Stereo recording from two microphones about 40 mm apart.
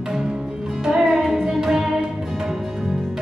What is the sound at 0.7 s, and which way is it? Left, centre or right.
Music, centre.